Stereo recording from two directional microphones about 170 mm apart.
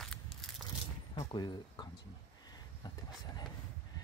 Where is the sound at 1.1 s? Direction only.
20° left (ahead or behind).